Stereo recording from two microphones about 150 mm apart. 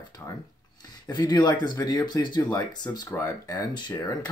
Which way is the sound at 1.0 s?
30° left (ahead or behind).